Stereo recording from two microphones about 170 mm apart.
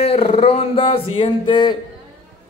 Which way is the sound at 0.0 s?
35° left (ahead or behind).